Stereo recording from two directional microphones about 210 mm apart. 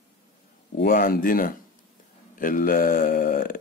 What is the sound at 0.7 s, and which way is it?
Speech, 40° left (ahead or behind).